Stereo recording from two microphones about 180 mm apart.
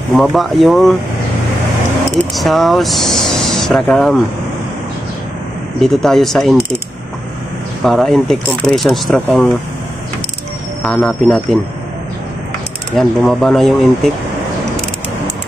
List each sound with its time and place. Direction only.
0.1 s speech: centre (ahead or behind)
2.3 s speech: centre (ahead or behind)
5.8 s speech: centre (ahead or behind)
7.8 s speech: centre (ahead or behind)
10.8 s speech: 5° left (ahead or behind)
12.9 s speech: centre (ahead or behind)